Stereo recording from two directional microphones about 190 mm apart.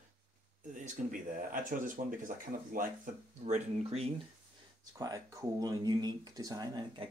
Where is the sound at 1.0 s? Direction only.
40° right (ahead or behind).